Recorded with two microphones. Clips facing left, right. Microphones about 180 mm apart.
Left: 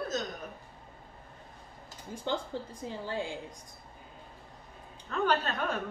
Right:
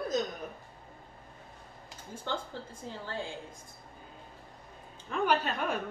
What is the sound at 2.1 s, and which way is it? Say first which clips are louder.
Speech: left 3 dB; 15° left (ahead or behind).